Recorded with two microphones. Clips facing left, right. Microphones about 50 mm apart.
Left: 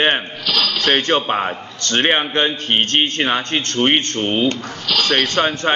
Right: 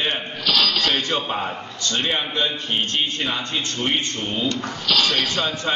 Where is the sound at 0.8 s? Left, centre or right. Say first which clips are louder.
Left 6 dB; left.